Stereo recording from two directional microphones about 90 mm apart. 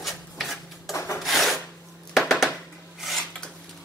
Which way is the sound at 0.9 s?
35° left (ahead or behind).